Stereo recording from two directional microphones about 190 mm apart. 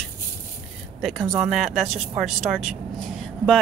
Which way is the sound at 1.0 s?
Centre (ahead or behind).